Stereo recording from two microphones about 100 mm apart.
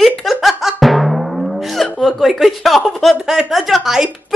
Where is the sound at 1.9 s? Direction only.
Centre (ahead or behind).